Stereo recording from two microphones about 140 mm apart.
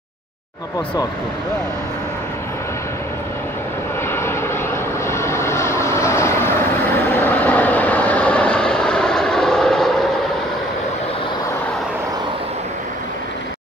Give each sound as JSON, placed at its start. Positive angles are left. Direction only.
{"t": 4.1, "sound": "vehicle", "side_deg": 20}